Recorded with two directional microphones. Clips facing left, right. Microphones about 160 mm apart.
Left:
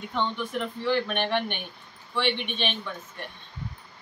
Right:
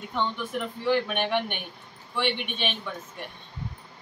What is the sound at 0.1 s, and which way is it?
Speech, 5° right (ahead or behind).